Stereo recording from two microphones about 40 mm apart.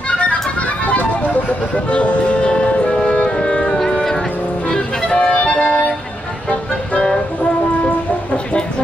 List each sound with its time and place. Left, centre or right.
0.1 s music: left
6.9 s music: left